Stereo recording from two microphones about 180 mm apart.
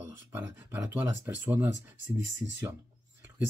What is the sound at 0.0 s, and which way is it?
Speech, 15° right (ahead or behind).